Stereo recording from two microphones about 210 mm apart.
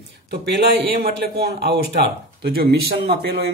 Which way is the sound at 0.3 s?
50° right (ahead or behind).